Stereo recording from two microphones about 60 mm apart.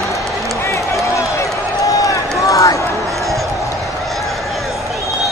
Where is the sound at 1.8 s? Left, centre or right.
Left.